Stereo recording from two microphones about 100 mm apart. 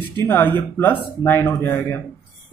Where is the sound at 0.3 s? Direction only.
20° left (ahead or behind).